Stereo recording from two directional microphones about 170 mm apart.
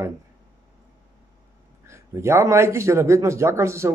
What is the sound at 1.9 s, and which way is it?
Speech, 15° right (ahead or behind).